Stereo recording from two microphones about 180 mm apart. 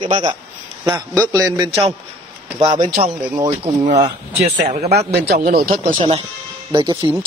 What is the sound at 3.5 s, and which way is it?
Speech, 25° right (ahead or behind).